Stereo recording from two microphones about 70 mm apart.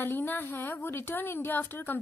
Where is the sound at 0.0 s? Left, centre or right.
Left.